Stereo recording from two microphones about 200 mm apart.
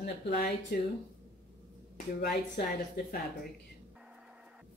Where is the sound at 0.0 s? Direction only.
55° left (ahead or behind).